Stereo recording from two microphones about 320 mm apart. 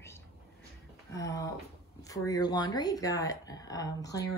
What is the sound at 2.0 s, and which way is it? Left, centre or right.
Speech, centre.